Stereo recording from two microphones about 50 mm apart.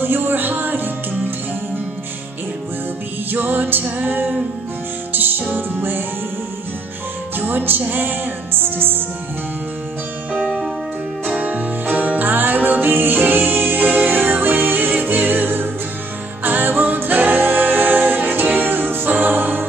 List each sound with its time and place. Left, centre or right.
0.0 s music: right
3.3 s music: right
5.5 s music: right
7.3 s music: right
10.3 s music: centre
11.2 s music: right